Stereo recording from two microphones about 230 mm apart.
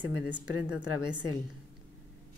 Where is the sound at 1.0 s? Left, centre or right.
Centre.